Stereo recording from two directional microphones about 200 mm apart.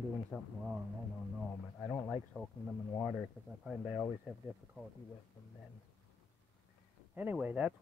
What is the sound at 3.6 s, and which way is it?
Speech, 5° right (ahead or behind).